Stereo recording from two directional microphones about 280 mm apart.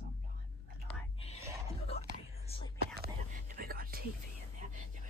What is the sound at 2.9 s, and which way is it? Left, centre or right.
Whispering, right.